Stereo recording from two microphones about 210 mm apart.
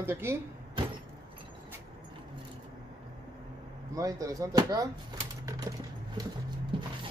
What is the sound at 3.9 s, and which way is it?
Speech, 15° right (ahead or behind).